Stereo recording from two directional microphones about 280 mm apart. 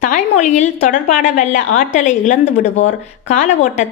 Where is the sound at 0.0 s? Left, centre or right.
Left.